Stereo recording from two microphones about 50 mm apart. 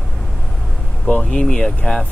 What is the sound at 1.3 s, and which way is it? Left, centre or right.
Speech, centre.